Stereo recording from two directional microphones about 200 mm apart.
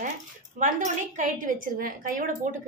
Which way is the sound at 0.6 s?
40° right (ahead or behind).